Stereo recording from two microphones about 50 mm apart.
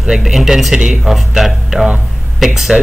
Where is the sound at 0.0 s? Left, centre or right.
Centre.